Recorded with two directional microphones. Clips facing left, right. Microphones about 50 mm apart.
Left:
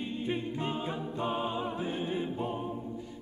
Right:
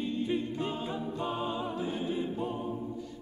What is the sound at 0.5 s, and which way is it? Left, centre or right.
A capella, left.